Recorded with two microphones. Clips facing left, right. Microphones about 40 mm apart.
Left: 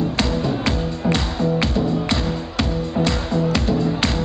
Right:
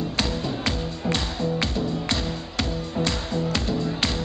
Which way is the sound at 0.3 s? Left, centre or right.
Centre.